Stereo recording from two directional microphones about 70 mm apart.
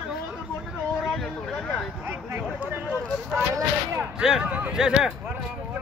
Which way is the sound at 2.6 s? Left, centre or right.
Right.